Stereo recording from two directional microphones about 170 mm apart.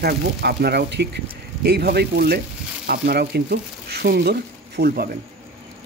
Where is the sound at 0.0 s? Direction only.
65° right (ahead or behind).